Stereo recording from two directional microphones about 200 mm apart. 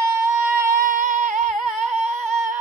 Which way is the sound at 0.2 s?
10° right (ahead or behind).